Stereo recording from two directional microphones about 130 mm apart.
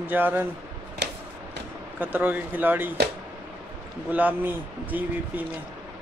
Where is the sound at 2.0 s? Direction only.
15° right (ahead or behind).